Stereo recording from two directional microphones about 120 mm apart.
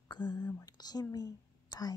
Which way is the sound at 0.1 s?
35° left (ahead or behind).